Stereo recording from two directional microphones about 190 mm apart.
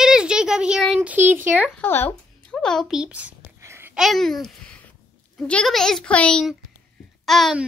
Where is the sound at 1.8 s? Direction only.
10° left (ahead or behind); by 3.3 s 5° right (ahead or behind).